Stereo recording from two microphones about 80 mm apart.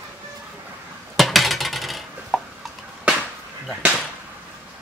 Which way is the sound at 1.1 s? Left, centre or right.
Centre.